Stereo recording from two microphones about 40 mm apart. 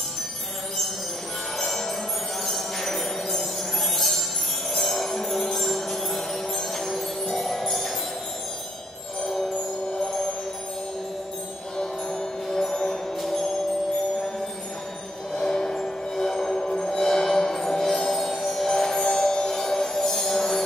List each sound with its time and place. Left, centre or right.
1.6 s music: centre
9.2 s chime: centre
11.7 s music: centre
13.2 s tubular bells: centre
15.3 s music: centre